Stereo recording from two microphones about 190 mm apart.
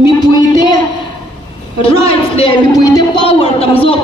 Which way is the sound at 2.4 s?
20° left (ahead or behind).